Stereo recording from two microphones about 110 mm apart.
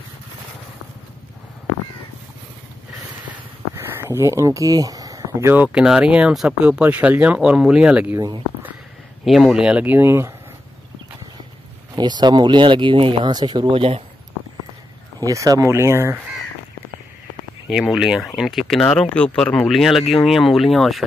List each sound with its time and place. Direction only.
3.7 s a sound: 25° right (ahead or behind)
5.5 s speech: 15° right (ahead or behind)
9.2 s speech: centre (ahead or behind); by 10.3 s 25° right (ahead or behind)
11.9 s speech: 40° right (ahead or behind); by 14.0 s 55° right (ahead or behind)
15.1 s speech: 30° right (ahead or behind)
17.6 s speech: 5° right (ahead or behind)